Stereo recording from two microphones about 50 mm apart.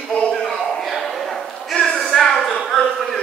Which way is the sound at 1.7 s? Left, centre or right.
Centre.